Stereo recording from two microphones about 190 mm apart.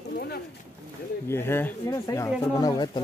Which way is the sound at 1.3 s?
10° left (ahead or behind).